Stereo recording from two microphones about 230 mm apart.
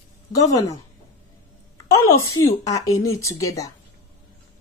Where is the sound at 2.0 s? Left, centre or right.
Left.